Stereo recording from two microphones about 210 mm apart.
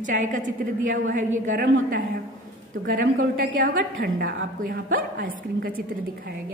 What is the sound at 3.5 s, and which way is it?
A woman's voice, 45° right (ahead or behind).